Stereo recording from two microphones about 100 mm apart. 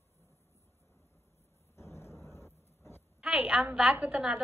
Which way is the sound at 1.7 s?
30° left (ahead or behind).